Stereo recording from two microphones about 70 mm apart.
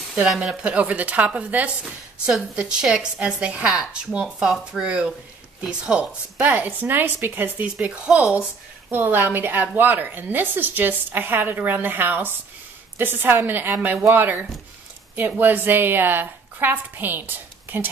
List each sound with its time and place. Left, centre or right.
0.1 s a woman's voice: centre
8.9 s a woman's voice: right